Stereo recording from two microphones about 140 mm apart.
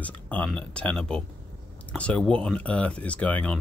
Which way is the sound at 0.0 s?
10° left (ahead or behind).